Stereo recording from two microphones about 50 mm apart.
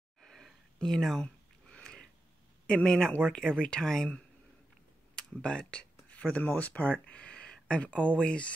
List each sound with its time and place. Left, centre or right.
0.2 s a sound: centre
2.6 s speech: centre
5.1 s speech: centre